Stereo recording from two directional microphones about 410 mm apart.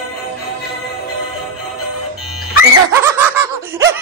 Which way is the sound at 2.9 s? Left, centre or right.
Centre.